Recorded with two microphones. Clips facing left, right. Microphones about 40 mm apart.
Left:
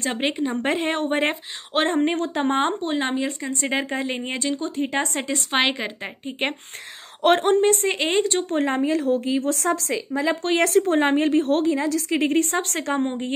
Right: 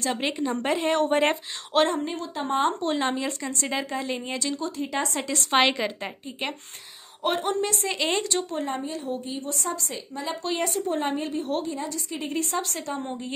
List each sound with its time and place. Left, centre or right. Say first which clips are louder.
0.0 s speech: left 3 dB; left
0.4 s a woman's voice: left 2 dB; centre
0.7 s speech: left 1 dB; left
0.9 s speech: right 1 dB; left
2.0 s a woman's voice: left 7 dB; left
2.8 s speech: left 2 dB; centre
3.6 s speech: left 4 dB; left
5.5 s a woman's voice: right 1 dB; centre
7.2 s speech: left 8 dB; left
8.5 s a woman's voice: left 8 dB; left
10.4 s a woman's voice: left 7 dB; left
13.0 s speech: left 8 dB; left